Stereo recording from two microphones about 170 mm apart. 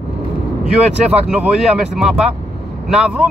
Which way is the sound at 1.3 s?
5° right (ahead or behind).